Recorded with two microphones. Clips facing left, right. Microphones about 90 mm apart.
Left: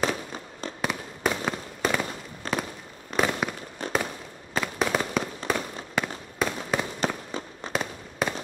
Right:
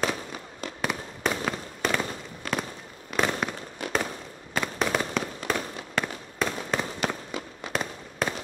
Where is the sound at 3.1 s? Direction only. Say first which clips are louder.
Left 1 dB; 5° left (ahead or behind).